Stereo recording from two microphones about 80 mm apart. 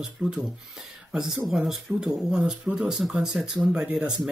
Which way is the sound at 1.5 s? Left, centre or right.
Centre.